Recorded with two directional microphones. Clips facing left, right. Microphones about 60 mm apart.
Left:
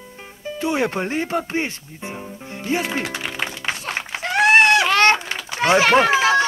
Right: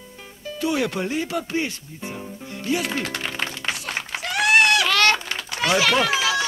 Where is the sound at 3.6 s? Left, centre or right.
Left.